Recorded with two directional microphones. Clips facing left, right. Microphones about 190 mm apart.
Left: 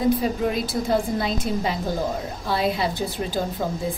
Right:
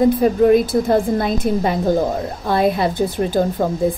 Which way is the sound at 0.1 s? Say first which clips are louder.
Right 9 dB; 50° right (ahead or behind).